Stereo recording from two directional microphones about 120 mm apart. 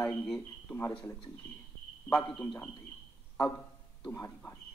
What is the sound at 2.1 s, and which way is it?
Speech, 5° left (ahead or behind).